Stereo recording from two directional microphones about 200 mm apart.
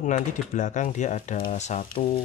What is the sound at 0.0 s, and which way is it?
Speech, 35° left (ahead or behind).